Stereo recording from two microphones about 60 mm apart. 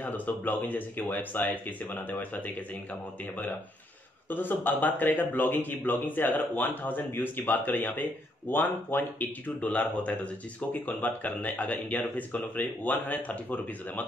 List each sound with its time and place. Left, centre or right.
0.0 s speech: left
4.3 s speech: left